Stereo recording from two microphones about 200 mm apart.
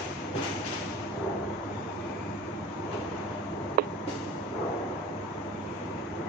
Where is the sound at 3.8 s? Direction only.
50° right (ahead or behind).